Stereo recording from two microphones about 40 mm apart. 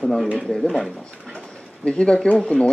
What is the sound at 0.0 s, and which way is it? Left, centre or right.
Speech, centre.